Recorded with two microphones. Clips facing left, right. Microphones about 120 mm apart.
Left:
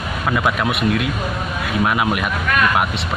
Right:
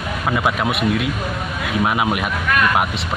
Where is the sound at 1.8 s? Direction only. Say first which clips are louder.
Even; 15° right (ahead or behind).